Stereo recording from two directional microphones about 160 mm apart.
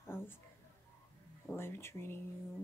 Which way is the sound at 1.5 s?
15° left (ahead or behind).